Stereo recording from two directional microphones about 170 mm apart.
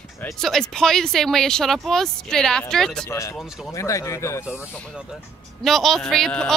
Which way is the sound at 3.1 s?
15° left (ahead or behind).